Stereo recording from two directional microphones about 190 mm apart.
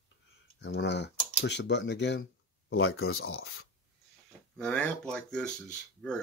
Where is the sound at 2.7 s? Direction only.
90° left.